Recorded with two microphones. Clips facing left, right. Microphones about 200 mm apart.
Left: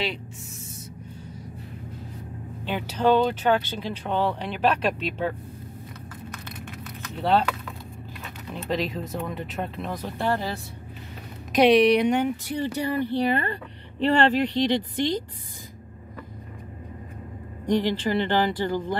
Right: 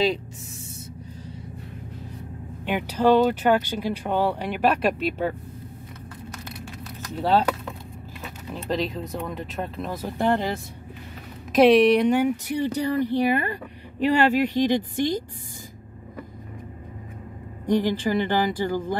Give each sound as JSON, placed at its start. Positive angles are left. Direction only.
{"t": 2.6, "sound": "speech", "side_deg": -15}
{"t": 7.2, "sound": "speech", "side_deg": -5}
{"t": 8.5, "sound": "speech", "side_deg": 0}
{"t": 10.0, "sound": "speech", "side_deg": -15}
{"t": 11.5, "sound": "speech", "side_deg": 0}
{"t": 12.5, "sound": "speech", "side_deg": -15}
{"t": 17.6, "sound": "speech", "side_deg": -10}